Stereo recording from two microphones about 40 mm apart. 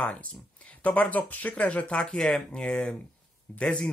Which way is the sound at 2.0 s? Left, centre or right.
Centre.